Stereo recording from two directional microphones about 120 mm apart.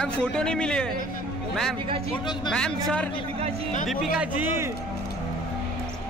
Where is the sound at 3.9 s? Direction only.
10° right (ahead or behind).